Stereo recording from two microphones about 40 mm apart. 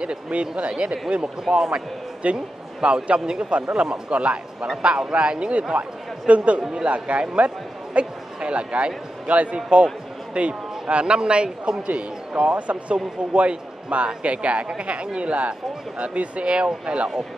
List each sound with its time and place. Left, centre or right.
0.0 s speech: right
1.5 s speech: centre
2.3 s a man's voice: right
11.8 s speech: right